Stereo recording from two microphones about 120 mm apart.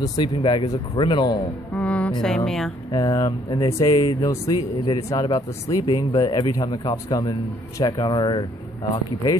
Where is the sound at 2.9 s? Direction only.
35° left (ahead or behind).